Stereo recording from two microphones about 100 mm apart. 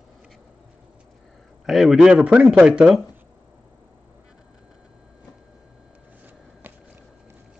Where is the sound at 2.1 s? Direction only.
15° right (ahead or behind).